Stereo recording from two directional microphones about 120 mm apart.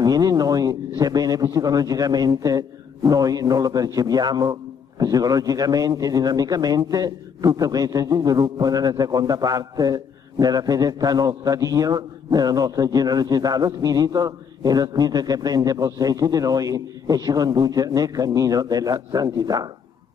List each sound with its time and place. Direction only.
0.0 s a man's voice: 30° right (ahead or behind)